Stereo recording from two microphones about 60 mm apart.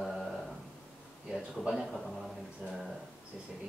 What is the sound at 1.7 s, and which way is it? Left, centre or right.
Speech, centre.